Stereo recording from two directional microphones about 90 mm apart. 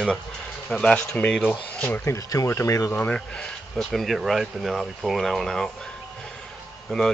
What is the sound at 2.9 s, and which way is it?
Speech, 10° left (ahead or behind).